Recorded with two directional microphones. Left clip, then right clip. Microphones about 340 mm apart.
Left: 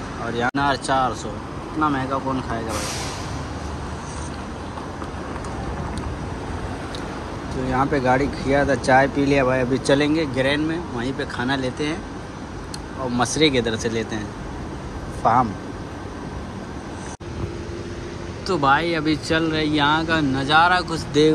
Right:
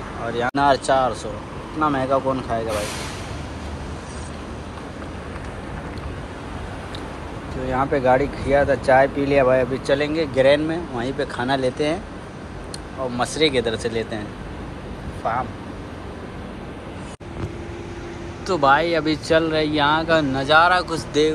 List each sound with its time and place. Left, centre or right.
0.3 s speech: centre
7.7 s speech: centre
13.1 s speech: centre
15.2 s speech: centre
18.5 s speech: centre